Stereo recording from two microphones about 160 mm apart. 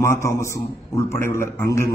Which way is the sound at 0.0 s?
15° left (ahead or behind).